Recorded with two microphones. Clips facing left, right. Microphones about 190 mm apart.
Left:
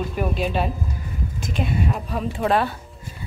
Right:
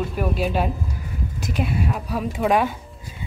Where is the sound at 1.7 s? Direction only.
5° right (ahead or behind).